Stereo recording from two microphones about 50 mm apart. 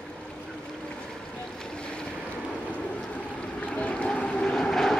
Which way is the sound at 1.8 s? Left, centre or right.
Centre.